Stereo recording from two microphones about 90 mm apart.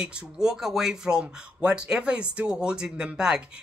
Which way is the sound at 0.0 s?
10° right (ahead or behind).